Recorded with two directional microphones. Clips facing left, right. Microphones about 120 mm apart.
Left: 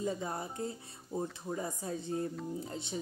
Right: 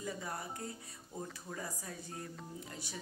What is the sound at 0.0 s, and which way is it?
Speech, 25° left (ahead or behind).